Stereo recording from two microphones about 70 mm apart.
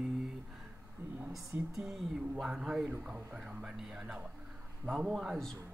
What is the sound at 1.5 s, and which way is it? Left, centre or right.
Speech, right.